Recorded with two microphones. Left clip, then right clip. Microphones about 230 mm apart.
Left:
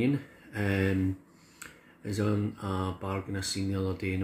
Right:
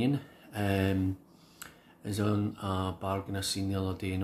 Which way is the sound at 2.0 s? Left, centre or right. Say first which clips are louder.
Left 1 dB; centre.